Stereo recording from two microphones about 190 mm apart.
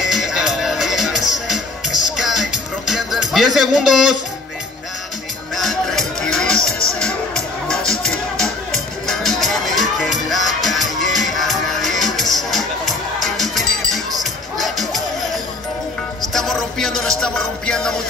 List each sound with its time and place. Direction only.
0.0 s music: centre (ahead or behind)
5.6 s music: centre (ahead or behind)
16.2 s music: centre (ahead or behind)